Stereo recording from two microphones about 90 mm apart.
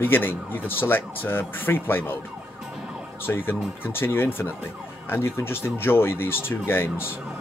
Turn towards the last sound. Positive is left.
turn(degrees=25)  # may be behind; listen again after turning